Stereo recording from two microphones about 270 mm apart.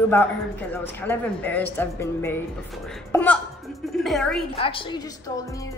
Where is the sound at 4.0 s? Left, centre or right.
Centre.